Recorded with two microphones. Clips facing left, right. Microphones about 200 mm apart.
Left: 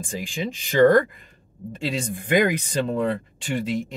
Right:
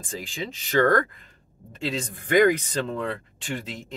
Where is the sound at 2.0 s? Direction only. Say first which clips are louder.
Right 1 dB; 15° left (ahead or behind).